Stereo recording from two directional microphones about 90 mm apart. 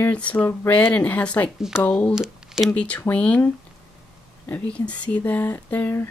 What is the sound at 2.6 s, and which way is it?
Speech, 15° left (ahead or behind).